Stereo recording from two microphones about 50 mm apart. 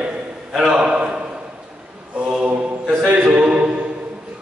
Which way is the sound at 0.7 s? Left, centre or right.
Right.